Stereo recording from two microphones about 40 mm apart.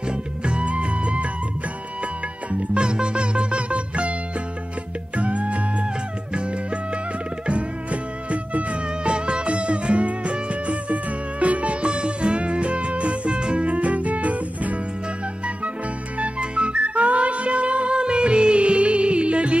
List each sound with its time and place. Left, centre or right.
0.1 s music: right
2.5 s music: right
5.1 s music: right
16.2 s music: right